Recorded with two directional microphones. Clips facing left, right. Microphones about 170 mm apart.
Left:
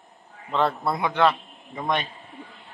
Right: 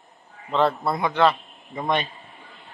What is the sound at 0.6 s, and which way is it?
A man's voice, centre (ahead or behind).